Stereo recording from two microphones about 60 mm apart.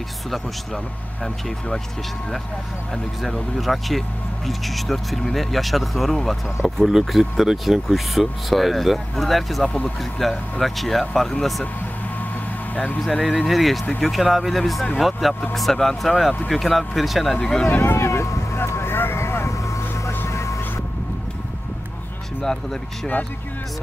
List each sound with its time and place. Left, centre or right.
3.2 s speech: centre
12.7 s speech: left
13.0 s speech: centre
17.4 s speech: centre
17.6 s a sound: left
20.2 s vehicle: left